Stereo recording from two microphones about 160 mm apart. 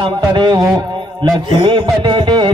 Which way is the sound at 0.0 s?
30° right (ahead or behind).